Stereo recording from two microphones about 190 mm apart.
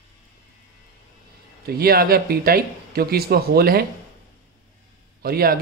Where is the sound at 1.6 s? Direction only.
55° right (ahead or behind).